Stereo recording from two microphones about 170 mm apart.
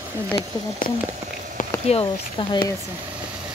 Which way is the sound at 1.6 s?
35° left (ahead or behind).